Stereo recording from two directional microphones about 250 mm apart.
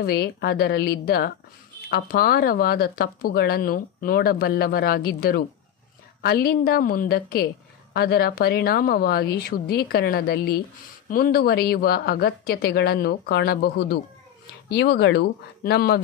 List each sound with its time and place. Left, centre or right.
0.0 s speech: left